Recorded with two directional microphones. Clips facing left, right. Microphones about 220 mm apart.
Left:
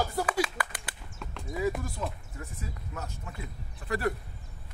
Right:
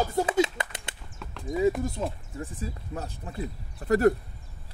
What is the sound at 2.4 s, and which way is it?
Speech, 30° right (ahead or behind).